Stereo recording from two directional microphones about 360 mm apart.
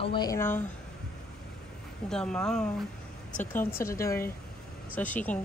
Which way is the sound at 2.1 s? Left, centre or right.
Centre.